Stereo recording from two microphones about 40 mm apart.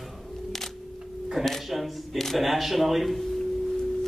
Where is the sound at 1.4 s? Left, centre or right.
Centre.